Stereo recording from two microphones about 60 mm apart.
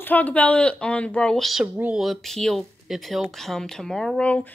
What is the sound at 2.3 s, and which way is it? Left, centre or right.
Speech, centre.